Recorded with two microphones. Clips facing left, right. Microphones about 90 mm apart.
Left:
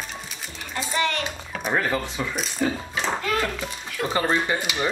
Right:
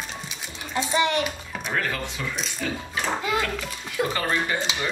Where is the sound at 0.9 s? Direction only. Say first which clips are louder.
Right 2 dB; 15° right (ahead or behind).